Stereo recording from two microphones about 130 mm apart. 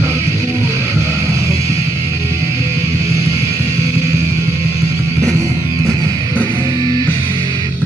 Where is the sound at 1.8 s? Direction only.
55° right (ahead or behind).